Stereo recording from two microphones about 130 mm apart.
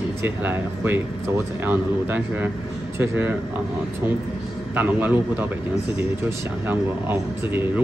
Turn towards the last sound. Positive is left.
turn(degrees=-15)  # may be behind; listen again after turning